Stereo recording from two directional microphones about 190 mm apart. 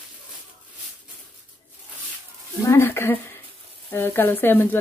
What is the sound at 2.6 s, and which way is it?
Speech, 10° left (ahead or behind).